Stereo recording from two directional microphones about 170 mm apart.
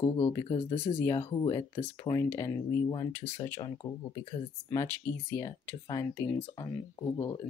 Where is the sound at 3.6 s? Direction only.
25° left (ahead or behind).